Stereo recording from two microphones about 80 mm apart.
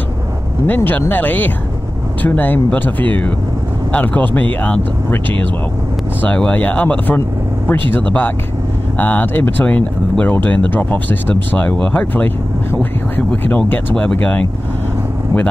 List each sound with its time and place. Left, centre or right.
0.7 s speech: left
6.2 s speech: centre
13.4 s speech: left